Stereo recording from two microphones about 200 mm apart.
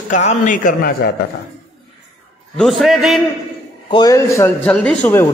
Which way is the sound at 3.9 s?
20° left (ahead or behind).